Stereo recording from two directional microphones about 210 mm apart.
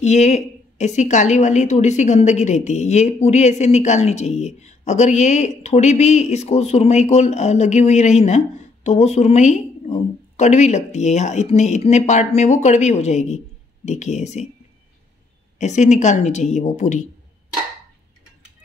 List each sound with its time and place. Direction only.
0.0 s a woman's voice: 35° left (ahead or behind)
15.6 s a woman's voice: 35° left (ahead or behind)